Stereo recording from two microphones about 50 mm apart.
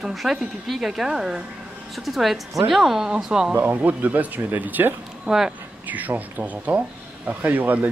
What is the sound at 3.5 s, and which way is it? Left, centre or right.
Speech, right.